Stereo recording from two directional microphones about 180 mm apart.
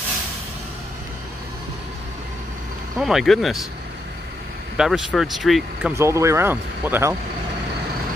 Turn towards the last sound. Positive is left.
turn(degrees=-10)  # may be behind; listen again after turning